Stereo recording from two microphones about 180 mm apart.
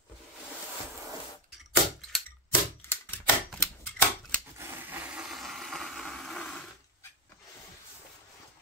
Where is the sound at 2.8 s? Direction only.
10° left (ahead or behind).